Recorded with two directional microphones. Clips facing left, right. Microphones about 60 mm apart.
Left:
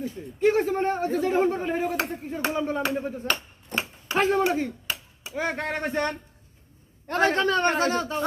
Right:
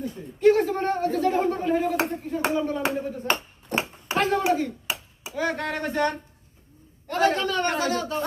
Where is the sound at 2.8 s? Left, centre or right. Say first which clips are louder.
Even; right.